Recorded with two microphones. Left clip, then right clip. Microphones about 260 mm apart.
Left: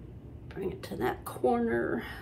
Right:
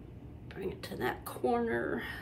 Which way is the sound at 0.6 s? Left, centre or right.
Centre.